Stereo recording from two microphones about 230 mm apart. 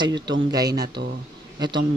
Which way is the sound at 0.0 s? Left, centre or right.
Centre.